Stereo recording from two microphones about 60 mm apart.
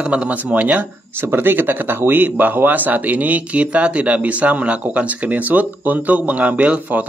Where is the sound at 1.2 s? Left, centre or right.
Right.